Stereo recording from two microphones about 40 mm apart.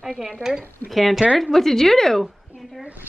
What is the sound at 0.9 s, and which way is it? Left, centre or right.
A woman's voice, centre.